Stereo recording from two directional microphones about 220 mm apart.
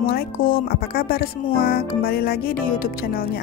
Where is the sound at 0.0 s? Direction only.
45° left (ahead or behind).